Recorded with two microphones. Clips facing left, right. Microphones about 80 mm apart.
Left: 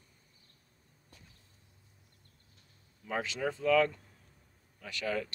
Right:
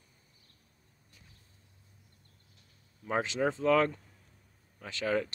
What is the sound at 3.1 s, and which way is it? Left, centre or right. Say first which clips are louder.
Speech: right 4 dB; right.